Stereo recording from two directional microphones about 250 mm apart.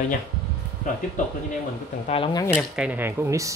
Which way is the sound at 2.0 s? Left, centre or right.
Left.